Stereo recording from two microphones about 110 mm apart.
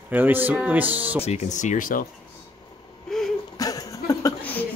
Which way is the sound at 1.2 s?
90° left.